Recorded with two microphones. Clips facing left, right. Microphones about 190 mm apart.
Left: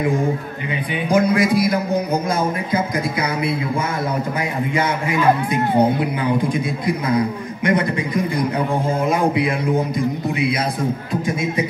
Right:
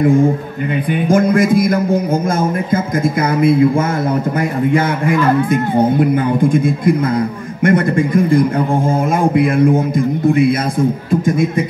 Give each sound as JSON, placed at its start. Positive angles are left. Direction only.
{"t": 1.0, "sound": "speech", "side_deg": -50}